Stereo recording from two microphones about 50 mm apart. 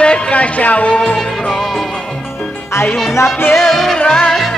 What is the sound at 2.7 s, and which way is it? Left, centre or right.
Music, left.